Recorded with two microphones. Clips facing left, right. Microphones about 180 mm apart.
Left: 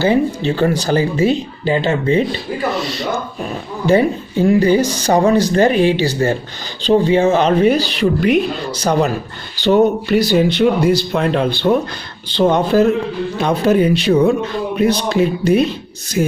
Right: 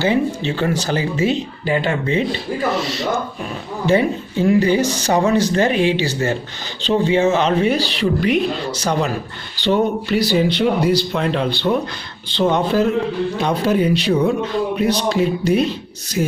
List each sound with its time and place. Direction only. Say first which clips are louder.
0.0 s speech: left 3 dB; 40° left (ahead or behind)
3.8 s speech: left 3 dB; 40° left (ahead or behind)
9.6 s speech: left 5 dB; 45° left (ahead or behind)